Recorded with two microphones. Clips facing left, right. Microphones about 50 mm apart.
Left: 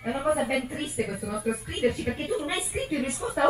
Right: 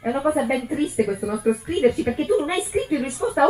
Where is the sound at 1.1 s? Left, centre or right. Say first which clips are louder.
Right 8 dB; centre.